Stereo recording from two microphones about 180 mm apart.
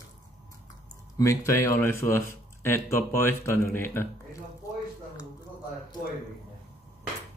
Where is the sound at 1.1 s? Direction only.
15° left (ahead or behind).